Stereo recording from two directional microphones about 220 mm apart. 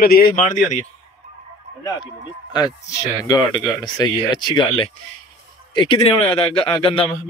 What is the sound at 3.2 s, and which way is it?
Speech, 15° left (ahead or behind).